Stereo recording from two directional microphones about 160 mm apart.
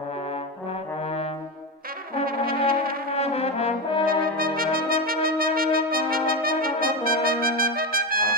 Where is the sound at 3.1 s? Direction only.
40° left (ahead or behind).